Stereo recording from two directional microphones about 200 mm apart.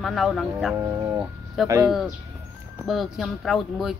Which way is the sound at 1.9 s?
Centre (ahead or behind).